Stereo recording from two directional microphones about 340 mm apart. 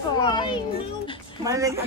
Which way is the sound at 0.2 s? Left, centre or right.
Centre.